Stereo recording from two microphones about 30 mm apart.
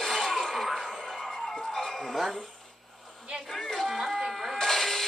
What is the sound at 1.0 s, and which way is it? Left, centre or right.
Music, left.